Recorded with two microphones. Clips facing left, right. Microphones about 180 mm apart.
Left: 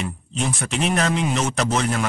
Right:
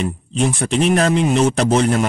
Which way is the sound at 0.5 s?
35° right (ahead or behind).